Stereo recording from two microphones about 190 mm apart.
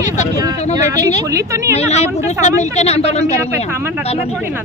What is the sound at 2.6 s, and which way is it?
Speech, 35° left (ahead or behind).